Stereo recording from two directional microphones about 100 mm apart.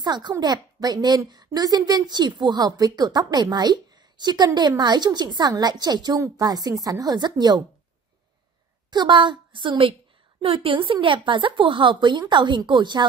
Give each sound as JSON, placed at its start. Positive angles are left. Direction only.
{"t": 0.0, "sound": "speech", "side_deg": -45}
{"t": 8.9, "sound": "speech", "side_deg": -50}
{"t": 10.4, "sound": "speech", "side_deg": -70}